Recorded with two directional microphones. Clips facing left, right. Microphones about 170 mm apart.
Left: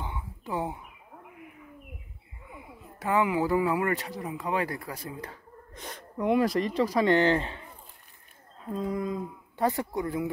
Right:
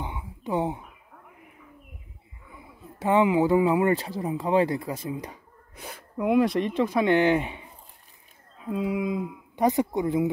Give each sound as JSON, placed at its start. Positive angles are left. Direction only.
{"t": 0.0, "sound": "a sound", "side_deg": -15}
{"t": 3.0, "sound": "speech", "side_deg": -20}
{"t": 8.6, "sound": "speech", "side_deg": -10}